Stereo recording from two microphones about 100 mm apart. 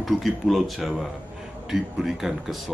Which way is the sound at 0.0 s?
Centre (ahead or behind).